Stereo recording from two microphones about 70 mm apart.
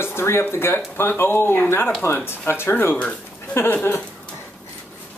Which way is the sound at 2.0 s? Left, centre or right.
Left.